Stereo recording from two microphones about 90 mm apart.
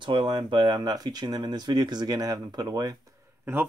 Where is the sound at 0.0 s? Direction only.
60° right (ahead or behind); by 3.0 s 45° right (ahead or behind).